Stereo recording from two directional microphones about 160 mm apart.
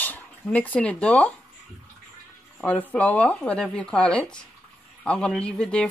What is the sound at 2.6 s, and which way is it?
Speech, 10° left (ahead or behind).